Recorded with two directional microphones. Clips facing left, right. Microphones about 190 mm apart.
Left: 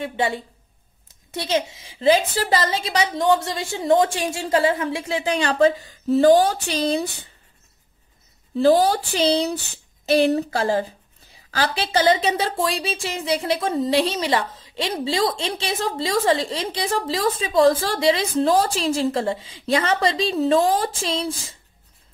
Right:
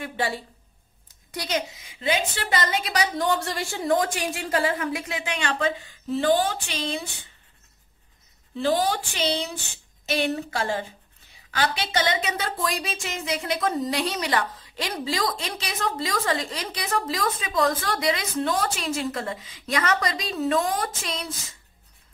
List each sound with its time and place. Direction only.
0.0 s speech: 20° left (ahead or behind)
8.5 s speech: 35° left (ahead or behind)